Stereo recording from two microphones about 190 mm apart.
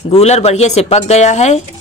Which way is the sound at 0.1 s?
35° left (ahead or behind).